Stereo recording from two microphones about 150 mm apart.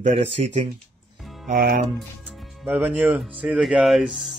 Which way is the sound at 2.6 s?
10° right (ahead or behind).